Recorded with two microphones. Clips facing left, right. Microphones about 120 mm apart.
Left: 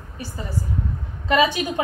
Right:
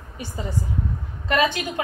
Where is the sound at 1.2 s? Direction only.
5° left (ahead or behind).